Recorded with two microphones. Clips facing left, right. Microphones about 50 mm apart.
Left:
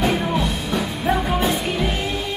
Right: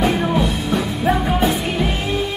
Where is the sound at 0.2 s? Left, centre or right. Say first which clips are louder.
Right 3 dB; centre.